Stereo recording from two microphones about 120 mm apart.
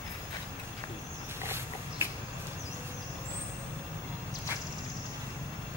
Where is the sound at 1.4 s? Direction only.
20° right (ahead or behind).